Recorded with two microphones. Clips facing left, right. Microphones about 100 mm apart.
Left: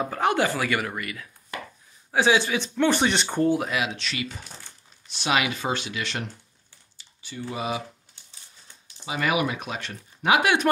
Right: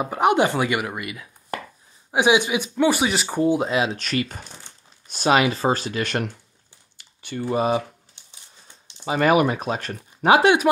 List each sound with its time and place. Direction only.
0.0 s speech: 20° right (ahead or behind)
3.4 s speech: 25° right (ahead or behind)
3.9 s speech: 45° right (ahead or behind)
9.0 s speech: 45° right (ahead or behind)